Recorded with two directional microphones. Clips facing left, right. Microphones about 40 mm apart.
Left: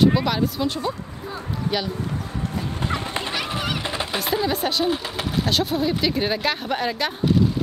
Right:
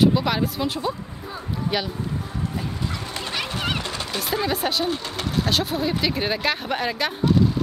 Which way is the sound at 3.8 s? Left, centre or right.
Left.